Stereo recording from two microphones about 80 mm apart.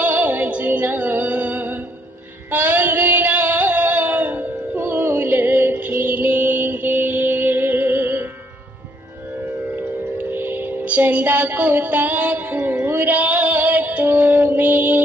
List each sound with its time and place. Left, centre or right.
0.0 s music: right
2.5 s a sound: right
9.8 s music: right